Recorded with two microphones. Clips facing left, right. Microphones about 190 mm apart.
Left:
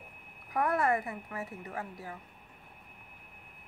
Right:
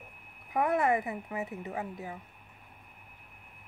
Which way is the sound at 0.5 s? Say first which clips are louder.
Right 2 dB; 20° right (ahead or behind).